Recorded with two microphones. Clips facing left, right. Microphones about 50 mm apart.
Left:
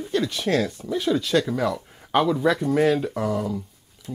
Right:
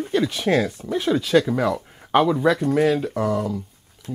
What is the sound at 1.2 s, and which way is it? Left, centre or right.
Speech, centre.